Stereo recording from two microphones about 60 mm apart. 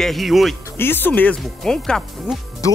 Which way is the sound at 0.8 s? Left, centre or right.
Left.